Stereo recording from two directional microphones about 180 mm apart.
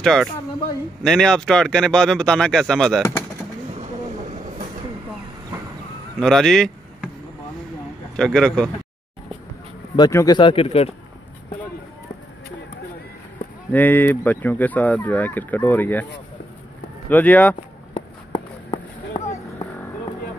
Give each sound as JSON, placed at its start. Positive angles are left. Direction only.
{"t": 0.0, "sound": "speech", "side_deg": 0}
{"t": 3.7, "sound": "train", "side_deg": -40}
{"t": 6.1, "sound": "speech", "side_deg": 5}
{"t": 8.2, "sound": "speech", "side_deg": 5}
{"t": 9.9, "sound": "speech", "side_deg": 20}
{"t": 13.7, "sound": "speech", "side_deg": 10}
{"t": 17.1, "sound": "speech", "side_deg": 10}
{"t": 17.9, "sound": "run", "side_deg": 30}